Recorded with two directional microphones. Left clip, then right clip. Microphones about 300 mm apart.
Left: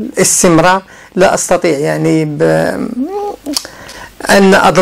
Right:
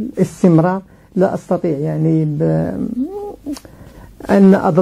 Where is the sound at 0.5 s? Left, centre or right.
Centre.